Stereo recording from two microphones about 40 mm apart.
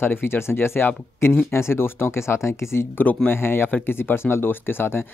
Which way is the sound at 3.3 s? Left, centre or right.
Left.